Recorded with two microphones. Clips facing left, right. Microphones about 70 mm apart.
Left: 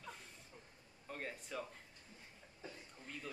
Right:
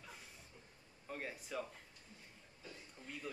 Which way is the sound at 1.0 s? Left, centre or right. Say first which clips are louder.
Right 1 dB; centre.